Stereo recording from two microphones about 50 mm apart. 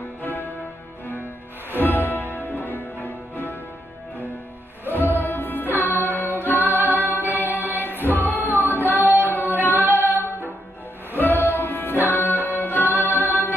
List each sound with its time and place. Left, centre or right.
0.2 s music: left
1.7 s music: left
4.8 s music: left
6.6 s music: right
7.0 s music: left
7.2 s music: right
7.7 s music: left
9.3 s female singing: left
11.1 s music: left